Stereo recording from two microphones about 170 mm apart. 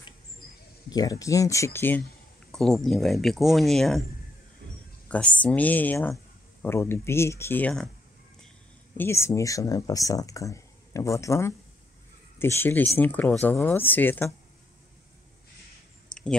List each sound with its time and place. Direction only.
0.8 s speech: 20° left (ahead or behind); by 4.0 s centre (ahead or behind)
5.0 s speech: 10° left (ahead or behind)
8.9 s speech: 15° left (ahead or behind)